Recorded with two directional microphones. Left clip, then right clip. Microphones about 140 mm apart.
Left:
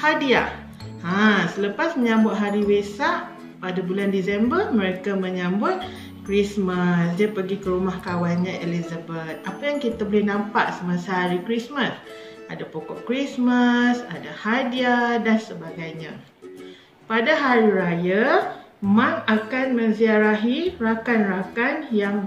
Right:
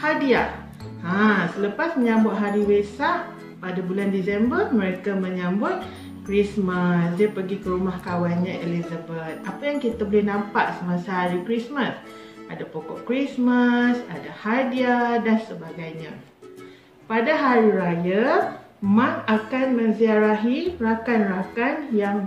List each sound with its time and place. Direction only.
0.0 s music: 20° left (ahead or behind)
1.0 s a woman's voice: 20° left (ahead or behind)
13.1 s speech: 15° left (ahead or behind)
17.1 s speech: 15° left (ahead or behind)